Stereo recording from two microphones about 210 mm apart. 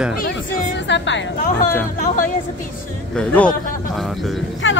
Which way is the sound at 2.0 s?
40° left (ahead or behind).